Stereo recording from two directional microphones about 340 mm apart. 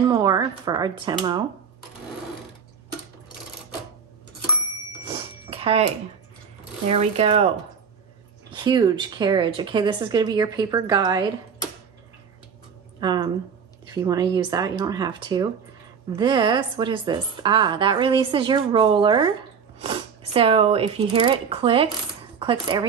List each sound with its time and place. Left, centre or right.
0.1 s a woman's voice: centre
5.0 s a sound: centre
6.9 s a woman's voice: centre
8.5 s a woman's voice: centre
13.0 s a woman's voice: centre